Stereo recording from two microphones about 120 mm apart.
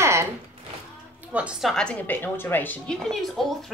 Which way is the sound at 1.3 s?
10° right (ahead or behind).